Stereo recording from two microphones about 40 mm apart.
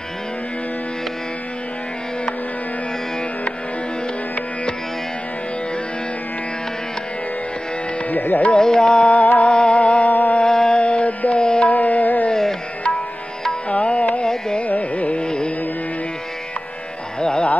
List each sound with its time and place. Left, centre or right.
8.1 s music: left
8.5 s music: centre
9.1 s music: left
9.5 s music: left
10.4 s music: centre
10.8 s music: left
11.7 s music: left
13.7 s music: left
14.2 s classical music: centre
14.6 s classical music: left
15.2 s carnatic music: left
17.2 s music: centre